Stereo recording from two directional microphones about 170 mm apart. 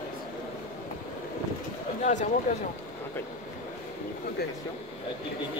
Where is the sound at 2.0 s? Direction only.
45° left (ahead or behind).